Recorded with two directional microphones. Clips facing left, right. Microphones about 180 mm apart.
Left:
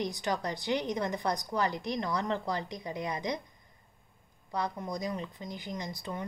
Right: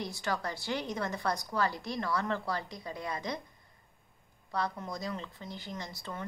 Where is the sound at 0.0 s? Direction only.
15° left (ahead or behind).